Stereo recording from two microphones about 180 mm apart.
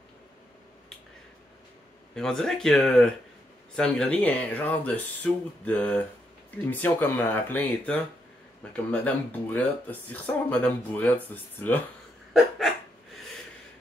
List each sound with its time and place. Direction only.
2.1 s speech: 5° left (ahead or behind)
9.0 s speech: 10° left (ahead or behind)